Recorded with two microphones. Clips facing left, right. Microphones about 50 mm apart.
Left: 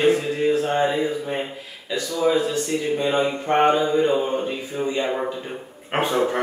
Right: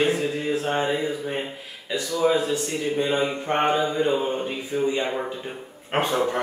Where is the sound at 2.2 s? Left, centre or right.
Centre.